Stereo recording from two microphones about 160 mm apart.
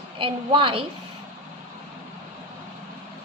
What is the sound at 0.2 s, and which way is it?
Speech, 30° right (ahead or behind).